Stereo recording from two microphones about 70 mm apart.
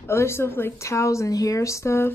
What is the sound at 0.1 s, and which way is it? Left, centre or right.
Speech, left.